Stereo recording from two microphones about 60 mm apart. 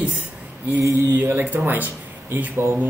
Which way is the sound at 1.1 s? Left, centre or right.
Right.